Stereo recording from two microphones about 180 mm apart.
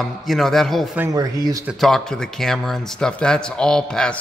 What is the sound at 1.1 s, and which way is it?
Speech, 20° right (ahead or behind).